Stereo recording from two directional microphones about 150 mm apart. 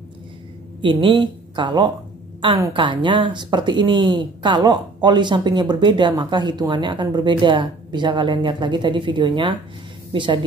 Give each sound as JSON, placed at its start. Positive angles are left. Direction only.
{"t": 0.7, "sound": "speech", "side_deg": -35}